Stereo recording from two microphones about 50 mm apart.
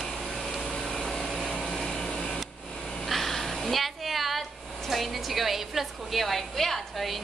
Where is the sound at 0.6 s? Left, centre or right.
Centre.